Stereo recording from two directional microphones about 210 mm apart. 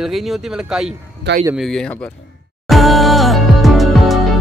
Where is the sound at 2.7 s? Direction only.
Centre (ahead or behind).